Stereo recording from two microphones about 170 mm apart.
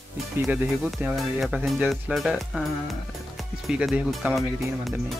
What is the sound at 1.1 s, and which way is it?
Speech, centre (ahead or behind).